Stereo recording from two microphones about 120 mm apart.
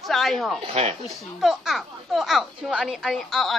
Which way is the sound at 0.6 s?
65° right (ahead or behind).